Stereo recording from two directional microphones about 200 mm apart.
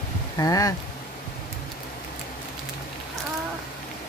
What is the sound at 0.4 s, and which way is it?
Speech, 15° left (ahead or behind).